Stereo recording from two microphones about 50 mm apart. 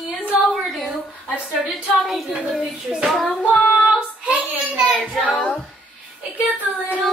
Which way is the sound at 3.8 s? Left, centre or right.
Right.